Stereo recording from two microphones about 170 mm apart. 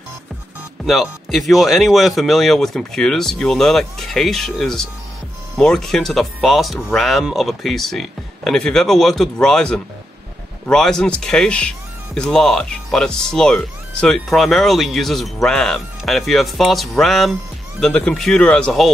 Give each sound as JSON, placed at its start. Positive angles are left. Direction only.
{"t": 0.8, "sound": "speech", "side_deg": 0}